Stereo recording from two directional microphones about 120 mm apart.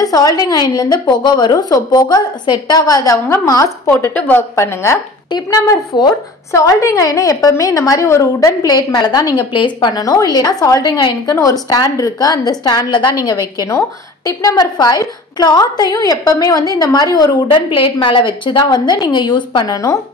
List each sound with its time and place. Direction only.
0.0 s a woman's voice: 30° left (ahead or behind)
5.3 s a woman's voice: 35° left (ahead or behind)